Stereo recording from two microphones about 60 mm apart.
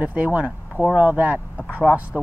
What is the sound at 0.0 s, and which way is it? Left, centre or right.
Speech, right.